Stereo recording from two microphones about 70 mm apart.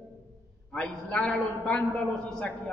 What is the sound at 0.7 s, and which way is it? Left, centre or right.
A man's voice, centre.